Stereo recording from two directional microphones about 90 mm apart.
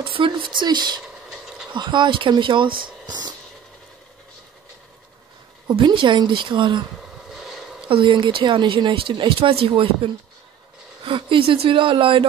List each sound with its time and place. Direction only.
0.0 s speech: 75° right (ahead or behind); by 1.0 s 55° right (ahead or behind)
1.3 s a sound: 5° right (ahead or behind)
1.7 s speech: 60° right (ahead or behind)
5.7 s speech: 65° right (ahead or behind)
7.2 s a sound: centre (ahead or behind)
7.9 s speech: 65° right (ahead or behind); by 10.1 s 85° right
11.1 s speech: 70° right (ahead or behind)